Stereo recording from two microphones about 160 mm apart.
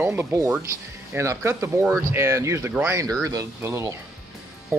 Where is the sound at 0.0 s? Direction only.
15° right (ahead or behind).